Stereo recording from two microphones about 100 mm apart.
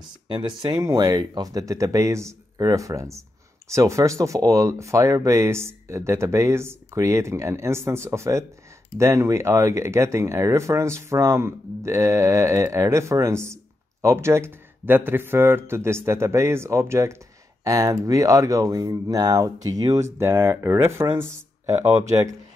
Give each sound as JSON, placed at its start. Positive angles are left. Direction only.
{"t": 0.3, "sound": "speech", "side_deg": -50}
{"t": 20.2, "sound": "speech", "side_deg": -25}